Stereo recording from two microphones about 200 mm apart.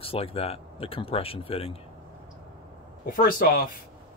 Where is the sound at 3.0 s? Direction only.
45° left (ahead or behind).